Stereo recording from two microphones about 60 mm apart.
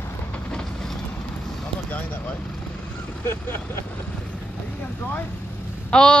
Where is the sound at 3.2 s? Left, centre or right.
Left.